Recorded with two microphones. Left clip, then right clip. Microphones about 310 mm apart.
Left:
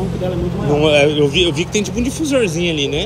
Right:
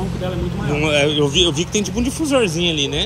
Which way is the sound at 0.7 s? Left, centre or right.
Centre.